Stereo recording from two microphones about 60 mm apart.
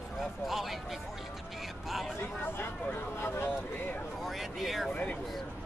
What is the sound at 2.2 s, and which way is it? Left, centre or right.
Speech, left.